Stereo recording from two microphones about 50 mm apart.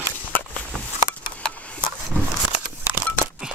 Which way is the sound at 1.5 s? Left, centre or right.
Left.